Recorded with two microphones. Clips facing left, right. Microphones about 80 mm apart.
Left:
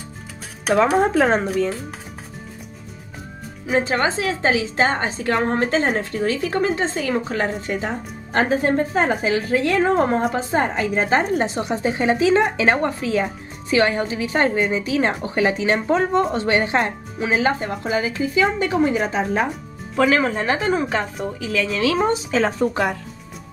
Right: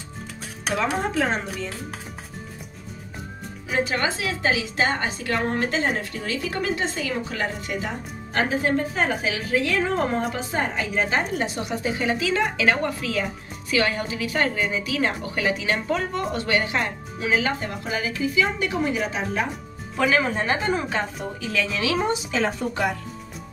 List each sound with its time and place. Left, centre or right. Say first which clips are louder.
0.7 s speech: left 8 dB; left
3.6 s a woman's voice: left 5 dB; left
11.4 s a woman's voice: left 5 dB; left
20.5 s a woman's voice: left 4 dB; centre
22.1 s a woman's voice: left 4 dB; left